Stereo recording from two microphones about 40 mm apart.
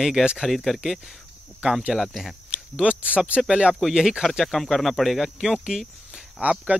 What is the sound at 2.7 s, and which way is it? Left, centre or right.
Speech, right.